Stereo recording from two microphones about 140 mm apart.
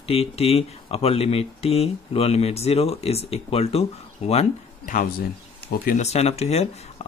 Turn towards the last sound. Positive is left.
turn(degrees=50)  # may be behind; listen again after turning